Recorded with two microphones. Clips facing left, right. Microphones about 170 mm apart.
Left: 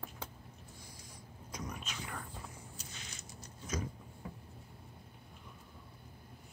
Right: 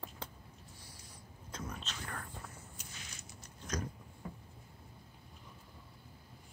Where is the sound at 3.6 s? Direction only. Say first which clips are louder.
Even; 5° left (ahead or behind).